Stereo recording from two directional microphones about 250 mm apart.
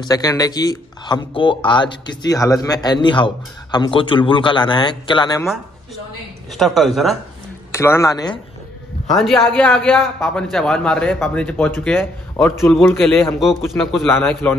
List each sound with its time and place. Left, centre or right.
0.0 s speech: centre
6.5 s a man's voice: centre
7.7 s speech: centre
9.1 s a man's voice: centre